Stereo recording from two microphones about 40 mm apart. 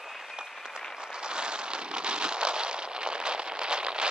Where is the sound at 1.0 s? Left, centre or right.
Centre.